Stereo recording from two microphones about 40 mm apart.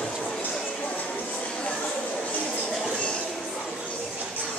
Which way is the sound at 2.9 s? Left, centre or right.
Left.